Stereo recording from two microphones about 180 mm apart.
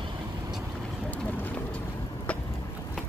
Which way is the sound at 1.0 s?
10° left (ahead or behind).